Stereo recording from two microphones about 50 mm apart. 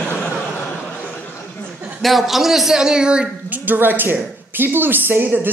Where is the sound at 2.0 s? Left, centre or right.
Centre.